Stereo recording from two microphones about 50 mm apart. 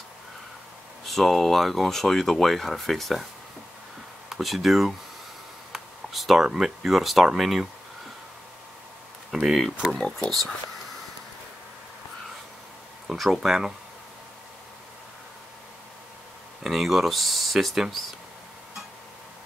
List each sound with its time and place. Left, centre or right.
1.0 s speech: centre
4.3 s speech: centre
9.3 s speech: centre
9.9 s speech: centre
13.0 s speech: centre
16.6 s speech: centre